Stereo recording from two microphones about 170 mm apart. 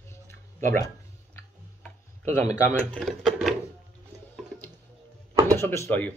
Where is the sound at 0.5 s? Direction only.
50° right (ahead or behind).